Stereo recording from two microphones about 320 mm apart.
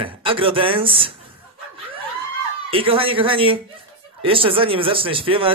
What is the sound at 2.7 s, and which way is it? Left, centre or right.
A man's voice, centre.